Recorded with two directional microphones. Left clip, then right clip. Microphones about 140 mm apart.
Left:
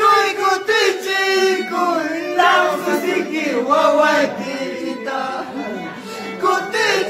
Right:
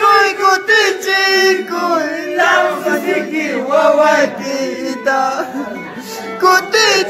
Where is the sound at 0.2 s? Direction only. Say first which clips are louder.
Right 5 dB; 15° right (ahead or behind).